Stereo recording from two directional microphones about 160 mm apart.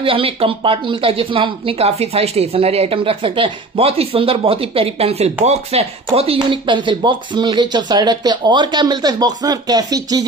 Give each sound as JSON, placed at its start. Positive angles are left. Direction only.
{"t": 0.0, "sound": "a woman's voice", "side_deg": -35}